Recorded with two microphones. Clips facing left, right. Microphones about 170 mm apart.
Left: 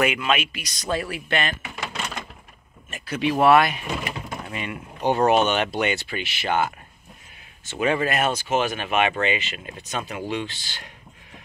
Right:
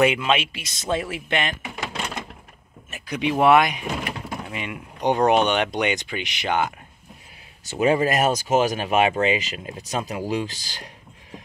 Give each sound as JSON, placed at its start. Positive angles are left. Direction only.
{"t": 0.0, "sound": "speech", "side_deg": -25}
{"t": 7.6, "sound": "speech", "side_deg": -40}